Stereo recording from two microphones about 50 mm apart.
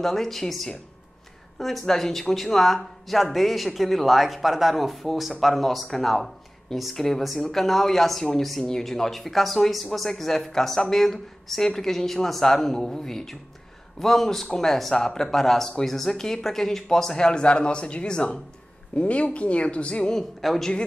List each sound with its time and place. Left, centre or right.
0.0 s speech: centre; by 20.1 s left
20.1 s speech: centre